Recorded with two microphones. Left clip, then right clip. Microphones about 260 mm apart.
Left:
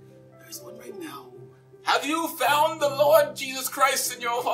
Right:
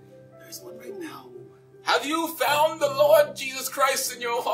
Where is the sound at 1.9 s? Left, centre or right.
Left.